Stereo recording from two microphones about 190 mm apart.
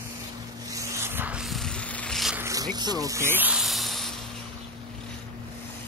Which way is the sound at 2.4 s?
20° right (ahead or behind).